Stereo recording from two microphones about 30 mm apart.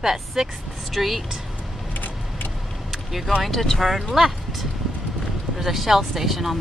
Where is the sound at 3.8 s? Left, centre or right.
Centre.